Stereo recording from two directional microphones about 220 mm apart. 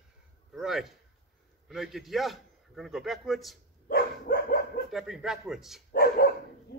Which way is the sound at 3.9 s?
40° left (ahead or behind).